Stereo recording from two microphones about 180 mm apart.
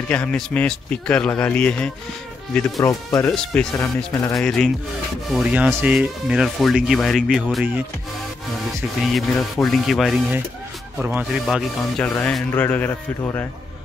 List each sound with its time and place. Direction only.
0.1 s a man's voice: 5° left (ahead or behind)
4.3 s speech: 5° left (ahead or behind)
9.0 s speech: centre (ahead or behind)
12.0 s a man's voice: 5° left (ahead or behind)